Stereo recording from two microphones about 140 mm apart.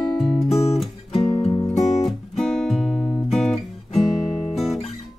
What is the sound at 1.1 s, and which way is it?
Music, 45° left (ahead or behind).